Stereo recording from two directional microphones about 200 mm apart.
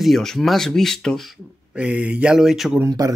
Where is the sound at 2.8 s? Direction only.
15° right (ahead or behind).